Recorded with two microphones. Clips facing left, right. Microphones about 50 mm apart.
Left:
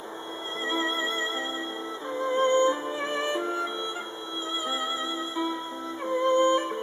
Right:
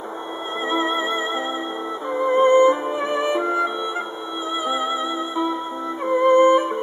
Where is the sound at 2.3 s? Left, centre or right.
Right.